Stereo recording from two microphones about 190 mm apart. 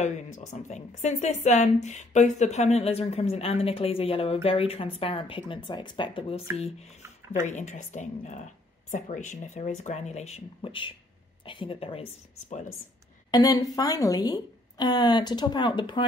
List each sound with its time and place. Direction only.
0.5 s a woman's voice: 40° left (ahead or behind)
7.3 s a woman's voice: 40° left (ahead or behind)
13.3 s a woman's voice: 20° left (ahead or behind)